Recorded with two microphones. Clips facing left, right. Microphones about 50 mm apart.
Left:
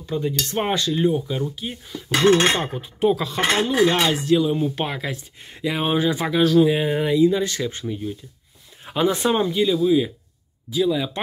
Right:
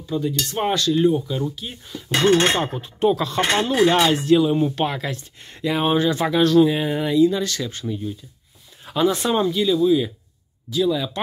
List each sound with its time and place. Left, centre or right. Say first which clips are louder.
0.1 s speech: right 1 dB; left
0.6 s speech: right 3 dB; centre
2.7 s speech: right 1 dB; centre
4.7 s speech: right 3 dB; centre; by 7.8 s left
8.8 s speech: even; left